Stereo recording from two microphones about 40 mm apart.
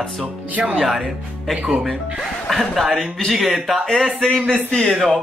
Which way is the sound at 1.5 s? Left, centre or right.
Right.